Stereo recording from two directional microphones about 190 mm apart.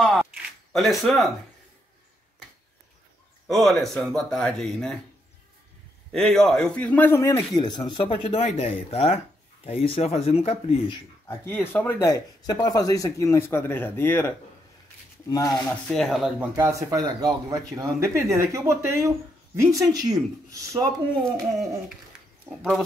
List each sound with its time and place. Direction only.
0.7 s speech: centre (ahead or behind)
3.4 s speech: centre (ahead or behind)
6.1 s a man's voice: centre (ahead or behind); by 11.0 s 30° left (ahead or behind)
11.2 s a man's voice: 10° left (ahead or behind)
15.7 s speech: centre (ahead or behind)
16.5 s speech: 15° right (ahead or behind)
22.1 s a sound: 5° right (ahead or behind)
22.5 s speech: centre (ahead or behind)